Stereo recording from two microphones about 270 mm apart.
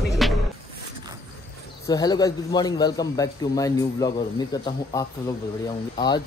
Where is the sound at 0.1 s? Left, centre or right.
Centre.